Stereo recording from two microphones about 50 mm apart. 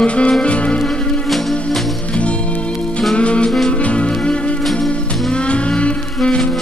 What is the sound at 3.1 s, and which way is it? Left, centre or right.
Music, left.